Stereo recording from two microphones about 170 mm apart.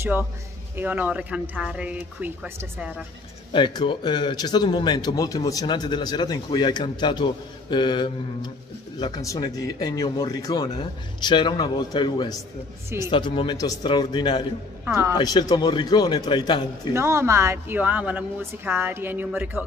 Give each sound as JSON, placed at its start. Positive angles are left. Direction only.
{"t": 0.0, "sound": "a woman's voice", "side_deg": -10}
{"t": 3.5, "sound": "a man's voice", "side_deg": 30}
{"t": 16.9, "sound": "a woman's voice", "side_deg": -15}